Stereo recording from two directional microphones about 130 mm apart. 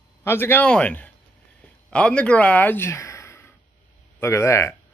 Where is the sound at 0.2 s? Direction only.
20° left (ahead or behind).